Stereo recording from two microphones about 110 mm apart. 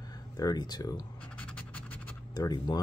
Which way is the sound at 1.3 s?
10° left (ahead or behind).